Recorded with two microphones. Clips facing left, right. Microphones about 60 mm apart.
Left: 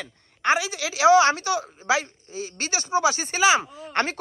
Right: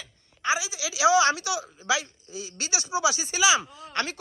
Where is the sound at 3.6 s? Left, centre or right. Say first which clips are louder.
Left 5 dB; left.